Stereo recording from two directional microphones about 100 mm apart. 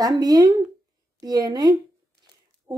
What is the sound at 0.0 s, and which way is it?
Speech, 40° right (ahead or behind).